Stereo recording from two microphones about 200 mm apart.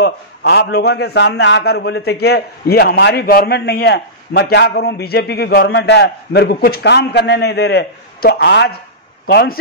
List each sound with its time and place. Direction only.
0.0 s a man's voice: 55° left (ahead or behind)